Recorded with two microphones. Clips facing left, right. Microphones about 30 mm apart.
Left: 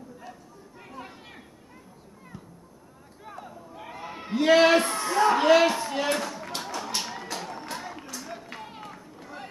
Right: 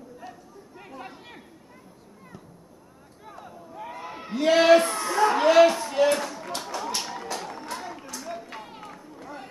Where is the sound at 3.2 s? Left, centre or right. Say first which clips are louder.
Left 1 dB; centre.